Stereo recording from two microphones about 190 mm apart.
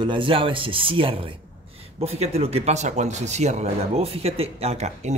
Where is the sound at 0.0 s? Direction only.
25° right (ahead or behind).